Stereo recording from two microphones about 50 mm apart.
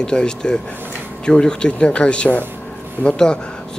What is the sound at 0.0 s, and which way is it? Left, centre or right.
Speech, centre.